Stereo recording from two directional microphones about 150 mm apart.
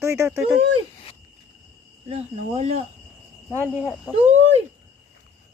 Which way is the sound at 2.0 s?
45° right (ahead or behind).